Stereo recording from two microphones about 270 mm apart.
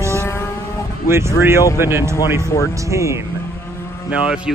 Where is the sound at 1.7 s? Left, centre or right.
Centre.